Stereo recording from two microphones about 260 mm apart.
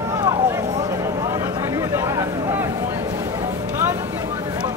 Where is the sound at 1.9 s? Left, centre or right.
Centre.